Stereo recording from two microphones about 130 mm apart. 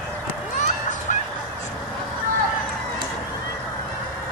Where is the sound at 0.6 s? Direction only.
75° left (ahead or behind).